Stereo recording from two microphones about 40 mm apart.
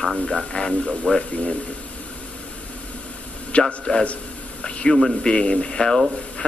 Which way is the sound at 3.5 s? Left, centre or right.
Left.